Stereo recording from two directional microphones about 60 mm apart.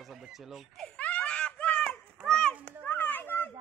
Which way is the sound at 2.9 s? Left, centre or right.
Left.